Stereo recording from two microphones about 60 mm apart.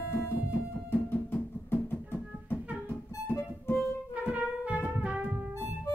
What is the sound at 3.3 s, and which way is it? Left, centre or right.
Music, left.